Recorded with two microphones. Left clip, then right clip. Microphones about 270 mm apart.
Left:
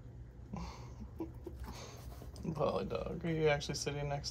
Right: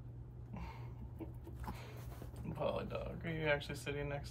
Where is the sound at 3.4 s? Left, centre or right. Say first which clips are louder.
Left 4 dB; centre.